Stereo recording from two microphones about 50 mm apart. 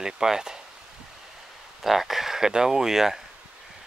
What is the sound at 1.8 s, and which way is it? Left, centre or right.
Speech, centre.